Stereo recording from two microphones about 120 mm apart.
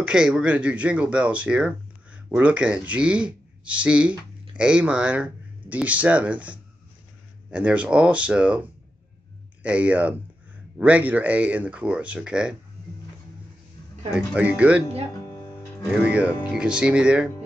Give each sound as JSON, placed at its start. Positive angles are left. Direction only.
{"t": 0.0, "sound": "speech", "side_deg": -5}
{"t": 14.1, "sound": "speech", "side_deg": -10}
{"t": 15.1, "sound": "music", "side_deg": 30}
{"t": 15.9, "sound": "speech", "side_deg": -10}